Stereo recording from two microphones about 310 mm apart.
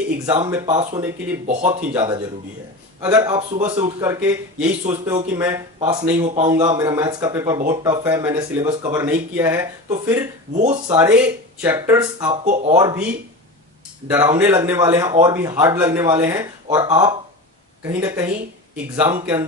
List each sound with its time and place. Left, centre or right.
0.5 s speech: centre
1.4 s speech: right
1.9 s speech: centre
5.0 s speech: right
5.3 s speech: centre
14.1 s speech: centre